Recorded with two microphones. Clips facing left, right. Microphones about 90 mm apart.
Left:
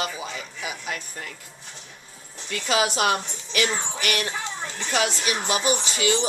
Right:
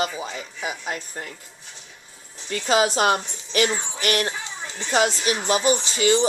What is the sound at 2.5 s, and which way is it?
A woman's voice, 35° right (ahead or behind).